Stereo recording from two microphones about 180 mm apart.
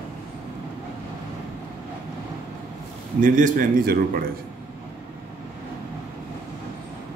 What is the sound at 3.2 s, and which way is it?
A man's voice, 45° right (ahead or behind).